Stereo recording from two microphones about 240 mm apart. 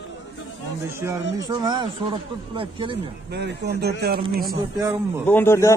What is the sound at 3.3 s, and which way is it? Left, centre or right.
Speech, right.